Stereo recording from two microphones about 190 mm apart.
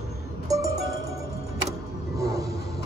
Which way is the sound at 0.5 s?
15° right (ahead or behind).